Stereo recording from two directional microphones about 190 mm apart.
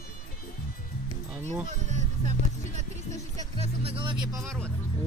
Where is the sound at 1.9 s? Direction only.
40° right (ahead or behind).